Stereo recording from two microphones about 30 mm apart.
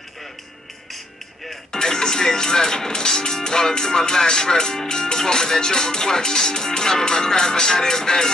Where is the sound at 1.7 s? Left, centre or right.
Centre.